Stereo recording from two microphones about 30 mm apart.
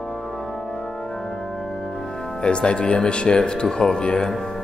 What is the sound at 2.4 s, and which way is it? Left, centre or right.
Speech, left.